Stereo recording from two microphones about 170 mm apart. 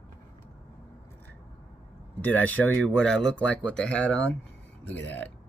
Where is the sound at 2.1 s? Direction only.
10° left (ahead or behind).